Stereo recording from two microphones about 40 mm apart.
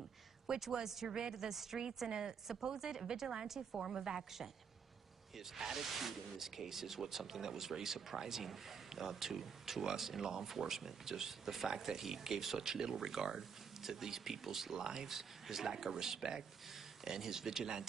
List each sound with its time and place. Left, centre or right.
0.6 s speech: centre